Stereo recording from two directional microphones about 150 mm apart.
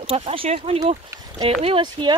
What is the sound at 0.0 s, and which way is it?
Speech, 40° right (ahead or behind).